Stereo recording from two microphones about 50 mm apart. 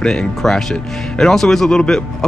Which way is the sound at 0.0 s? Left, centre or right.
Centre.